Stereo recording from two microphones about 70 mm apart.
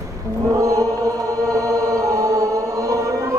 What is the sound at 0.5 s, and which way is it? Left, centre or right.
Choir, right.